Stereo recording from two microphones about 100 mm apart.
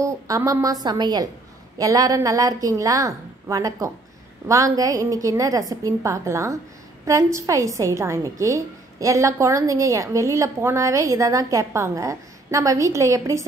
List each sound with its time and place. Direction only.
0.0 s a woman's voice: 30° right (ahead or behind)
0.8 s a woman's voice: 45° right (ahead or behind)